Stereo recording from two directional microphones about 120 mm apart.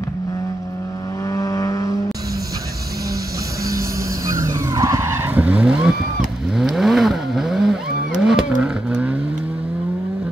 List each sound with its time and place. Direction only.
1.3 s vehicle: 30° left (ahead or behind)
4.3 s vehicle: 25° right (ahead or behind); by 9.1 s 10° right (ahead or behind)